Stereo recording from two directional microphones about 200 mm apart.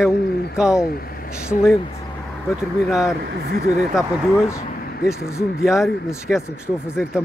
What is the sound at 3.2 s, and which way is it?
Speech, 55° right (ahead or behind).